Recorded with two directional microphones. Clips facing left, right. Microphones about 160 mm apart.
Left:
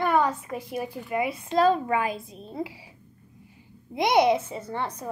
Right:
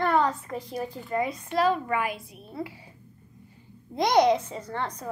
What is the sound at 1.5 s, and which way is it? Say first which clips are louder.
A child's voice: left 4 dB; 25° left (ahead or behind).